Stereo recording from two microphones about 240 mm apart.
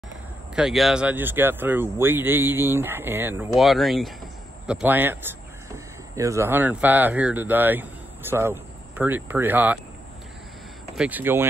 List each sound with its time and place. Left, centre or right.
0.6 s speech: centre
11.0 s speech: centre